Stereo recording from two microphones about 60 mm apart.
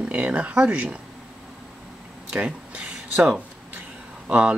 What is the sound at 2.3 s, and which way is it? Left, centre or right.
Speech, centre.